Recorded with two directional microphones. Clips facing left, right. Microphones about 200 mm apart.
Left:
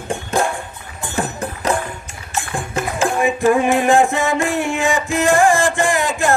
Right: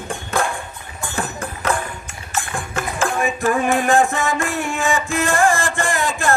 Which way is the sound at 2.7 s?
35° left (ahead or behind).